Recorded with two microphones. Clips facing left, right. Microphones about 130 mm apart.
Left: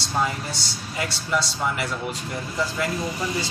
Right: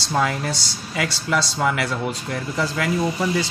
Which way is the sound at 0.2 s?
90° right.